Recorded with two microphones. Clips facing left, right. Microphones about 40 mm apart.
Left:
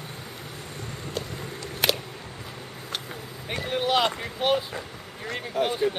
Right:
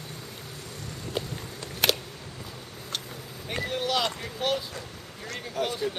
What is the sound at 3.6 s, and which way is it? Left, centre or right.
Speech, left.